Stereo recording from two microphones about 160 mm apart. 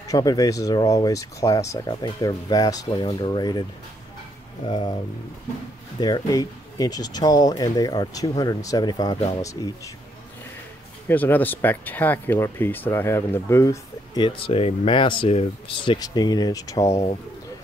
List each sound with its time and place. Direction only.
0.1 s speech: 20° left (ahead or behind)
4.6 s speech: 30° left (ahead or behind)
5.9 s speech: 25° left (ahead or behind)
11.1 s speech: 10° left (ahead or behind)
14.2 s speech: 35° left (ahead or behind)